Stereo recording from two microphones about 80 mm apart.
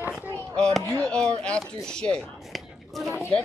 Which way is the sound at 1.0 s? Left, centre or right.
Centre.